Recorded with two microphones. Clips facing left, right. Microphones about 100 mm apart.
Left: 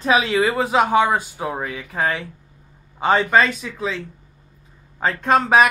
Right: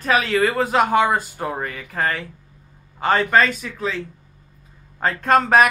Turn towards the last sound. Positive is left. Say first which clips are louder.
# even
turn(degrees=0)  # may be behind; listen again after turning